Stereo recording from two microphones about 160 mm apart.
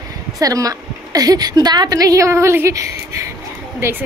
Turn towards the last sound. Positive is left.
turn(degrees=-15)  # may be behind; listen again after turning